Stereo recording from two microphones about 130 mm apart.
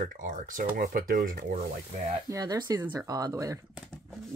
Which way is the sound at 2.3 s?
30° right (ahead or behind).